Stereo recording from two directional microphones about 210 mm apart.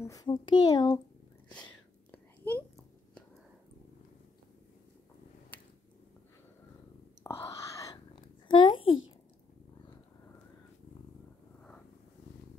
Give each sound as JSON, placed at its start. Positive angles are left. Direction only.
{"t": 0.0, "sound": "a child's voice", "side_deg": 15}
{"t": 1.5, "sound": "whispering", "side_deg": 5}
{"t": 7.2, "sound": "whispering", "side_deg": 15}
{"t": 8.5, "sound": "a sound", "side_deg": 20}